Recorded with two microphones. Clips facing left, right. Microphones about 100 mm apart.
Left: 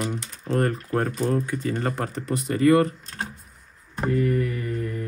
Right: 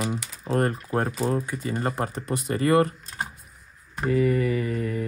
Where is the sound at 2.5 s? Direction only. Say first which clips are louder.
Left 5 dB; 40° right (ahead or behind).